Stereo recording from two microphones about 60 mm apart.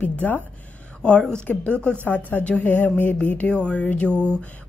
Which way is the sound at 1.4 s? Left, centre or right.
Left.